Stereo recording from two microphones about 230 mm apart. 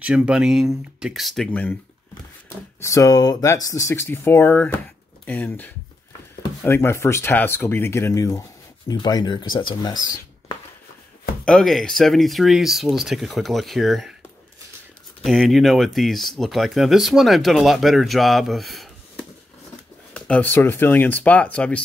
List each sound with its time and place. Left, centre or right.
0.0 s speech: centre
2.8 s speech: centre
11.4 s speech: centre
15.2 s speech: centre